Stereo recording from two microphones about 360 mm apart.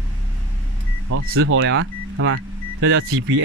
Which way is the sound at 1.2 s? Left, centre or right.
Right.